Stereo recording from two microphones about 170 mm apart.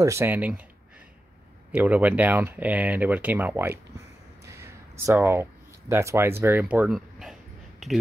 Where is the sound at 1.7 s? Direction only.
10° right (ahead or behind).